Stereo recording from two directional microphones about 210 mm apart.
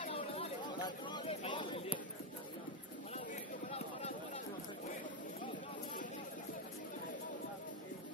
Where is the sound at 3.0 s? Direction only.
30° left (ahead or behind).